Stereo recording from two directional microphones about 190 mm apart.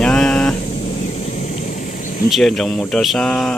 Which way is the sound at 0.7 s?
40° left (ahead or behind).